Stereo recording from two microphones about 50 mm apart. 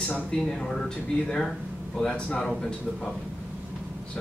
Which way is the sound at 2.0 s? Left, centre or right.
Centre.